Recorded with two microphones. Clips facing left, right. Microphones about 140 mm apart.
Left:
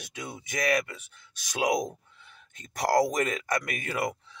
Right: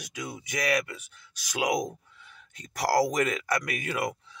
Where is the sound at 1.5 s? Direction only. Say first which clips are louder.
Left 1 dB; 25° left (ahead or behind).